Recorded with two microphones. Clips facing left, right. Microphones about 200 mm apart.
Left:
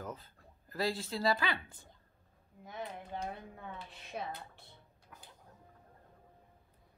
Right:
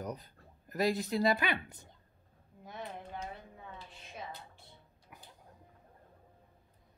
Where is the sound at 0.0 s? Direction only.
20° right (ahead or behind).